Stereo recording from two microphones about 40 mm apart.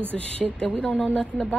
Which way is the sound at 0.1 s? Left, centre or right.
Left.